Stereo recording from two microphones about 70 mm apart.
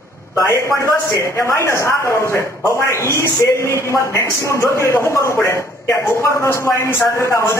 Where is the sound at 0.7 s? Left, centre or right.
Left.